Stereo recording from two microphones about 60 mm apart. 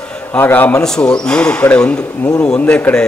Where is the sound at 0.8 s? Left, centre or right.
Centre.